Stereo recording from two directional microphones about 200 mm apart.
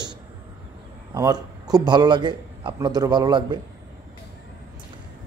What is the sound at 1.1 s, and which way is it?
A man's voice, 20° right (ahead or behind).